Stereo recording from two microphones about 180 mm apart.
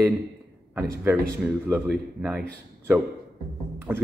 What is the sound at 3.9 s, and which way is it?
Speech, 10° right (ahead or behind).